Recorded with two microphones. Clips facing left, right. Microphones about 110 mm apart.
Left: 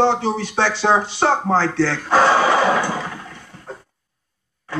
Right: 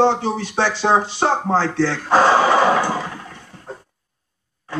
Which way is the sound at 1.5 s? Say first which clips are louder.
Even; 40° right (ahead or behind).